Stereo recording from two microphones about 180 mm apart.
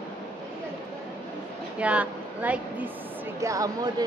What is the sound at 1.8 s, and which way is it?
A woman's voice, 10° right (ahead or behind).